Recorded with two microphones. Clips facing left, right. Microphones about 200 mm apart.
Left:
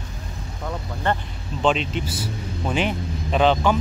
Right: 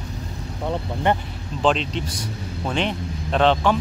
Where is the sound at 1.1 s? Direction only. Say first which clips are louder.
Right 3 dB; 15° right (ahead or behind).